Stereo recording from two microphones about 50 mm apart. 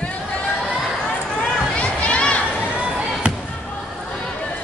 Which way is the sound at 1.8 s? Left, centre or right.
Left.